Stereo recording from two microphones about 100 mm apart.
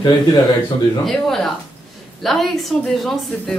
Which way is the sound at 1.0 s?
5° left (ahead or behind).